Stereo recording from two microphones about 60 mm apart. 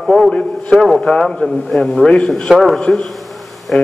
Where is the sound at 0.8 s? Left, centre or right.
Centre.